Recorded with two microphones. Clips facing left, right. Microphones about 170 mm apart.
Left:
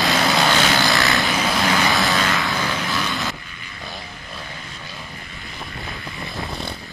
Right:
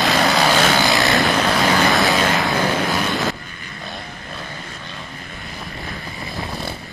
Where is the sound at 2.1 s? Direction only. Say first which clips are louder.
Right 4 dB; 20° right (ahead or behind).